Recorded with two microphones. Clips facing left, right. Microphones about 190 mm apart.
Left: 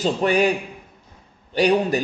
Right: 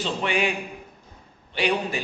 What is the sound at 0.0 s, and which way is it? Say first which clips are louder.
A man's voice: left 7 dB; 40° left (ahead or behind).